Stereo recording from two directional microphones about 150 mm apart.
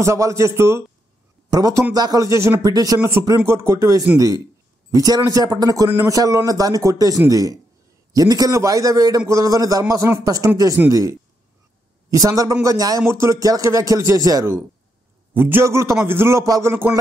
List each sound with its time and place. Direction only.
0.0 s a man's voice: 20° right (ahead or behind)